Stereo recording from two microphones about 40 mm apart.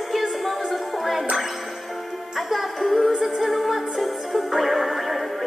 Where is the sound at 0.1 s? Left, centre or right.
Centre.